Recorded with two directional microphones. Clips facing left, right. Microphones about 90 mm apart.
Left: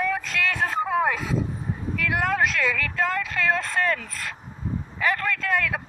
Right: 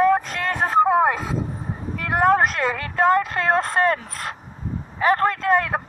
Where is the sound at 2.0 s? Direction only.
40° right (ahead or behind).